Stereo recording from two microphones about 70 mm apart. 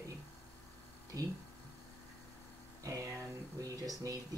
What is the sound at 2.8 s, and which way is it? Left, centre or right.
Music, right.